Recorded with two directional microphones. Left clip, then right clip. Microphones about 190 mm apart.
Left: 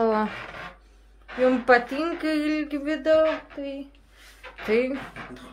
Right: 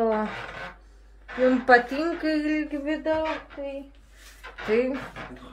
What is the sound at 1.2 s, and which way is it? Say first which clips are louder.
Speech: left 1 dB; 5° left (ahead or behind).